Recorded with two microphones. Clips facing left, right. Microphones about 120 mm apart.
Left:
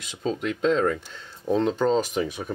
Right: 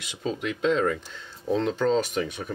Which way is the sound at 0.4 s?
5° right (ahead or behind).